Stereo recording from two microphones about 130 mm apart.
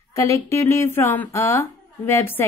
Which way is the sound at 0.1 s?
20° left (ahead or behind).